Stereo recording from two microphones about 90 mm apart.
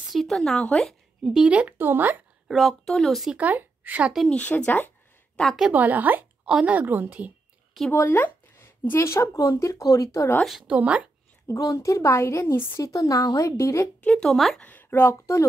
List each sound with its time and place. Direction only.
0.1 s speech: centre (ahead or behind); by 2.2 s 20° right (ahead or behind)
2.4 s speech: centre (ahead or behind)
3.3 s speech: 20° right (ahead or behind)
4.3 s speech: 15° left (ahead or behind)
5.6 s a woman's voice: 20° right (ahead or behind)
7.9 s a woman's voice: 25° left (ahead or behind)
10.7 s speech: 15° right (ahead or behind)
11.4 s a woman's voice: 35° left (ahead or behind)
14.0 s speech: 10° left (ahead or behind)
14.3 s speech: centre (ahead or behind)
14.6 s speech: 20° left (ahead or behind)